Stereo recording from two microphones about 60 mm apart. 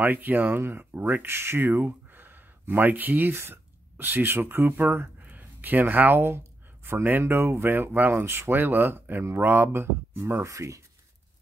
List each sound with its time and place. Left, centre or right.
0.0 s speech: right
1.2 s speech: right
10.4 s speech: right